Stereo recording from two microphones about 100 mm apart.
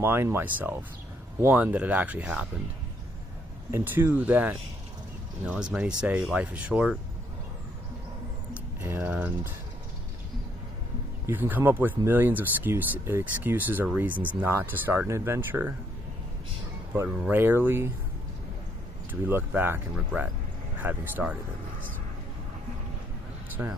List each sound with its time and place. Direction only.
0.0 s speech: 25° right (ahead or behind)
3.7 s speech: 25° right (ahead or behind)
9.0 s speech: 15° right (ahead or behind)
11.2 s speech: 20° right (ahead or behind)
17.2 s speech: 20° right (ahead or behind)
19.2 s speech: 20° right (ahead or behind)
20.8 s speech: 20° right (ahead or behind)
23.6 s speech: 20° right (ahead or behind)